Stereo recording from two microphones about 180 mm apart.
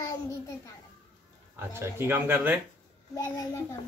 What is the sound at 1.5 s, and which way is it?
Speech, 15° right (ahead or behind).